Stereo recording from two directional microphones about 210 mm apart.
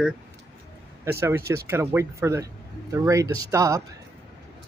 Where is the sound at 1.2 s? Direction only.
10° right (ahead or behind).